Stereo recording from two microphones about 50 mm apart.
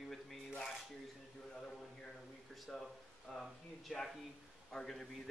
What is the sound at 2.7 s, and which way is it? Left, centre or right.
A man's voice, centre.